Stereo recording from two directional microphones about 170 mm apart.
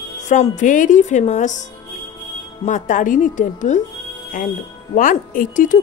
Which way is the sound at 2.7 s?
50° left (ahead or behind).